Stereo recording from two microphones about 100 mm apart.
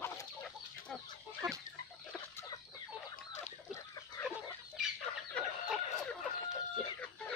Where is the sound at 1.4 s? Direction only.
40° right (ahead or behind).